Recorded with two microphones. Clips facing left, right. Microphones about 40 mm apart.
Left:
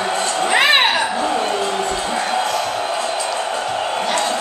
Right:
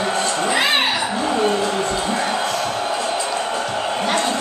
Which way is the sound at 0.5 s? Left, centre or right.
Left.